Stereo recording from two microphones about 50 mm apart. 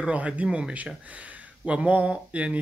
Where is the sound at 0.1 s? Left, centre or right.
Right.